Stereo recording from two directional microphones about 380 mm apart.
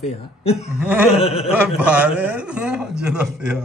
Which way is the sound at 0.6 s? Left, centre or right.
Centre.